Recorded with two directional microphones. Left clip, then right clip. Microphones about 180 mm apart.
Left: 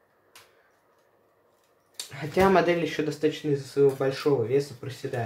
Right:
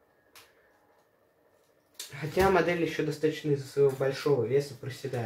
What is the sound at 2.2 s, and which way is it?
Speech, 45° left (ahead or behind).